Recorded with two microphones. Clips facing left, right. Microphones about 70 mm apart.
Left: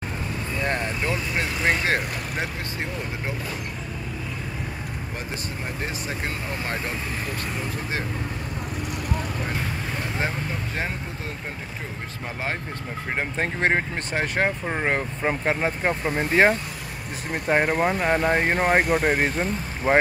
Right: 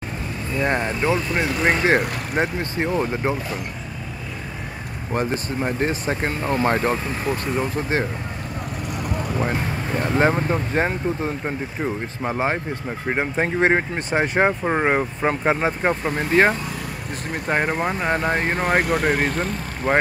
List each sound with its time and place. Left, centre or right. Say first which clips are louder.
0.6 s speech: right 5 dB; right
2.0 s speech: right 6 dB; right
5.1 s speech: right 13 dB; right
9.9 s speech: right 11 dB; right
13.1 s speech: right 5 dB; centre
18.5 s speech: even; centre